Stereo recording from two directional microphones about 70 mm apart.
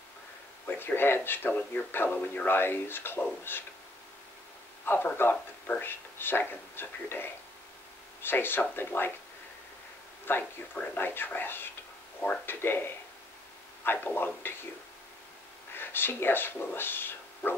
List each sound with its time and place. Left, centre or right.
0.7 s speech: left
2.0 s speech: centre
2.4 s speech: left
4.8 s speech: left
10.3 s speech: left
15.7 s speech: left